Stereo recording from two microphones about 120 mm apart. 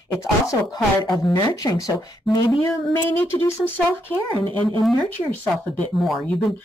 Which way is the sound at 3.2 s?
20° left (ahead or behind).